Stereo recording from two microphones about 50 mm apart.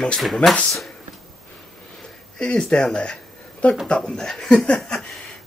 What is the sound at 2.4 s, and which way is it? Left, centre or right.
Speech, centre.